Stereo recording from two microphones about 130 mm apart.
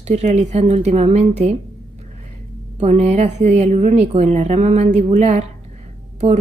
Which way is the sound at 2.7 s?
60° right (ahead or behind).